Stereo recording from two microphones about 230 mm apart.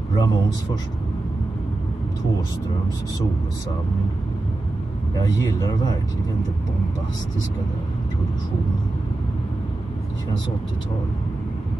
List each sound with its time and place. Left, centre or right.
0.1 s speech: centre